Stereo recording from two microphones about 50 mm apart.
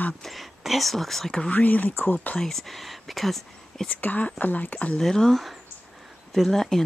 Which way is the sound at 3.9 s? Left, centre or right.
Left.